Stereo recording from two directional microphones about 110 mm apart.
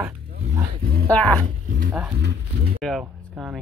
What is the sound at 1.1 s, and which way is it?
Speech, 10° left (ahead or behind).